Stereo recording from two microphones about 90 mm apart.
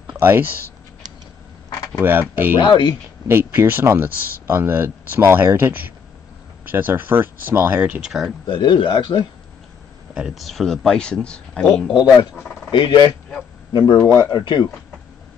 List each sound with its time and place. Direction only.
0.2 s speech: 25° right (ahead or behind)
2.0 s speech: 20° right (ahead or behind)
2.6 s speech: 60° left (ahead or behind)
3.3 s speech: 25° right (ahead or behind); by 8.3 s 5° right (ahead or behind)
8.5 s speech: 60° left (ahead or behind)
10.1 s speech: 5° right (ahead or behind); by 11.9 s 10° left (ahead or behind)
11.9 s speech: 65° left (ahead or behind)